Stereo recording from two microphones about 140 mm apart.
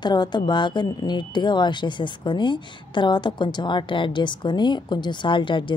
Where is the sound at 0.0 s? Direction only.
30° left (ahead or behind).